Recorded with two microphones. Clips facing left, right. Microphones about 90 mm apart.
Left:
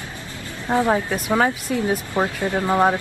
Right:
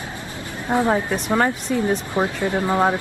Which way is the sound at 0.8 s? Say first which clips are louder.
Even; 10° left (ahead or behind).